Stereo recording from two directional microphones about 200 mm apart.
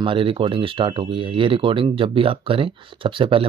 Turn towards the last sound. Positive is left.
turn(degrees=-25)  # may be behind; listen again after turning